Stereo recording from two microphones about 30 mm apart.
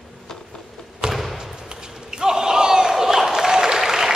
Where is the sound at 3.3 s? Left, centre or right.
Centre.